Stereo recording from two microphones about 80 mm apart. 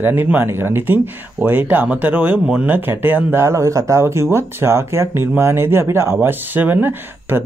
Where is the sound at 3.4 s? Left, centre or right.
Right.